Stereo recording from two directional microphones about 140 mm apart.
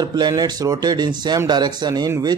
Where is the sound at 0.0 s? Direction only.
30° right (ahead or behind).